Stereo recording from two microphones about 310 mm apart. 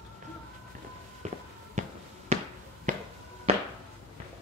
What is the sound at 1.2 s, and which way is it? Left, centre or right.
Walk, right.